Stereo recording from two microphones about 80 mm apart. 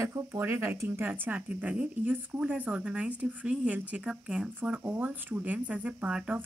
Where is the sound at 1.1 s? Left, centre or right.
Right.